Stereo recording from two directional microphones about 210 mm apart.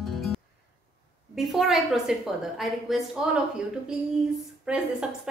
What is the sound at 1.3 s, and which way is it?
A woman's voice, centre (ahead or behind).